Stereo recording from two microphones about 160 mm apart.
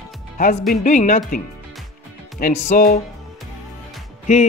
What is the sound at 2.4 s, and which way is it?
Speech, 60° left (ahead or behind).